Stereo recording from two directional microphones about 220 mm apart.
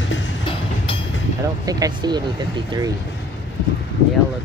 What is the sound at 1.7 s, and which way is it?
Speech, 20° right (ahead or behind).